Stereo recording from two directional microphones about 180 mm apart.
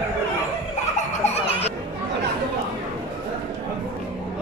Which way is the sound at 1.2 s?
35° left (ahead or behind).